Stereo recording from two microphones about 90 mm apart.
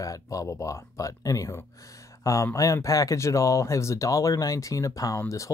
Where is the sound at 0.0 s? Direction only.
40° left (ahead or behind).